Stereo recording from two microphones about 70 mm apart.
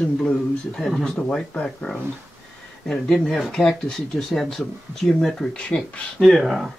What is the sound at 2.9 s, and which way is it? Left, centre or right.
A man's voice, centre.